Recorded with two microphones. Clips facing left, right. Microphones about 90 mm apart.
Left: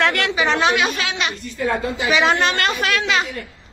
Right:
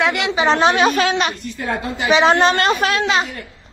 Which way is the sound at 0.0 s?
15° right (ahead or behind).